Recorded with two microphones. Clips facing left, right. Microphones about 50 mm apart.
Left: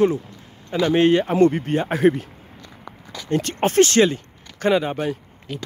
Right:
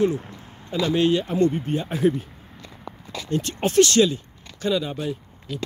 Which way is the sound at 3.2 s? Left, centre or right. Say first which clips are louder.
Left 4 dB; left.